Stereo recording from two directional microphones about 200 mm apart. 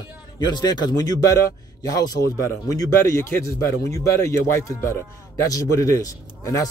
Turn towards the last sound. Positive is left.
turn(degrees=15)  # may be behind; listen again after turning